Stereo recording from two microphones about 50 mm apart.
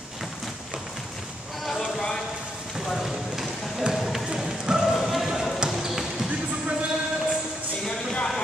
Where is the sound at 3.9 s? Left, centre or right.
Centre.